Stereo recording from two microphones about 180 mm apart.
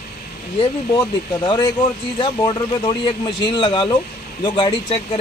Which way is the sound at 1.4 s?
25° left (ahead or behind).